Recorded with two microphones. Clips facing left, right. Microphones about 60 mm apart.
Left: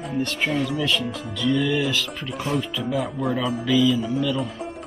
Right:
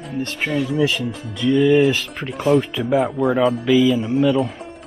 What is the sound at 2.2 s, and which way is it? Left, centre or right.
Speech, centre.